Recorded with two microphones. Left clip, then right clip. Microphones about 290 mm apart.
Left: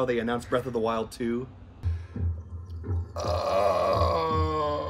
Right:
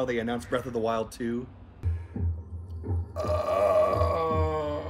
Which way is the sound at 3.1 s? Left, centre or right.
Centre.